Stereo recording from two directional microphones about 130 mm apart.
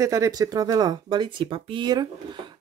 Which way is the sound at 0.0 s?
25° right (ahead or behind).